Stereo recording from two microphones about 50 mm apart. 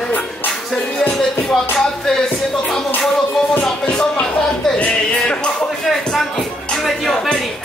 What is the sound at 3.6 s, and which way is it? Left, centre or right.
Speech, centre.